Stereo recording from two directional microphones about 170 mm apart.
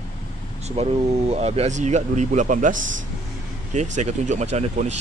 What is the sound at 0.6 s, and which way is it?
Speech, 40° right (ahead or behind).